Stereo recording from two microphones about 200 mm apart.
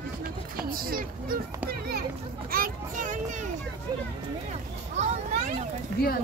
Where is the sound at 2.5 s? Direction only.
45° right (ahead or behind).